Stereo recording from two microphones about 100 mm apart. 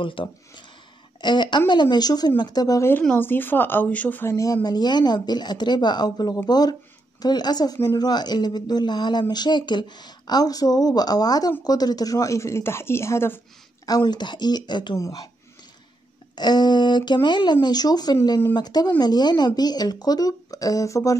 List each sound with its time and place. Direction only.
0.0 s speech: 60° left (ahead or behind)
1.2 s speech: 50° left (ahead or behind)
3.0 s speech: 15° left (ahead or behind)
4.6 s speech: 45° left (ahead or behind); by 13.4 s 25° left (ahead or behind)
13.8 s speech: 40° left (ahead or behind)
15.0 s speech: 35° left (ahead or behind)
16.3 s speech: 45° left (ahead or behind)